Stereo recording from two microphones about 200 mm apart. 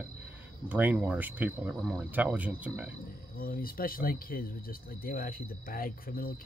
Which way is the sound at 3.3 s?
45° left (ahead or behind).